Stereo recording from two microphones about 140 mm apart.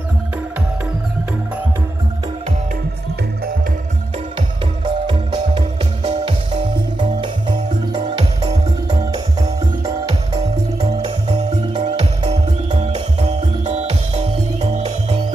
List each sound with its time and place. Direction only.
4.8 s music: 35° right (ahead or behind); by 15.1 s 50° right (ahead or behind)